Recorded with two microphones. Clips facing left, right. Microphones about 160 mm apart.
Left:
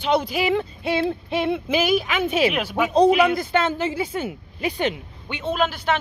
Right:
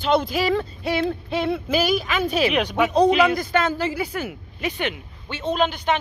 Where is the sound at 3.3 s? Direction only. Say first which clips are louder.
Even; 25° left (ahead or behind).